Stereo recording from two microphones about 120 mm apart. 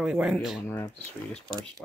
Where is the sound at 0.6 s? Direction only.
20° left (ahead or behind).